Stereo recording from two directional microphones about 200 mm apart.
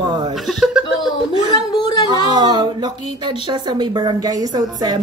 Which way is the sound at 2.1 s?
20° right (ahead or behind).